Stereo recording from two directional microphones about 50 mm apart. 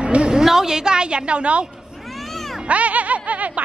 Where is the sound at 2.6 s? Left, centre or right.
Right.